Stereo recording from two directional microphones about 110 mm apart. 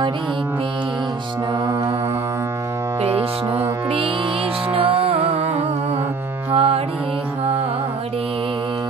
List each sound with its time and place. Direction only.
3.0 s music: 60° right (ahead or behind)
4.7 s music: 55° right (ahead or behind)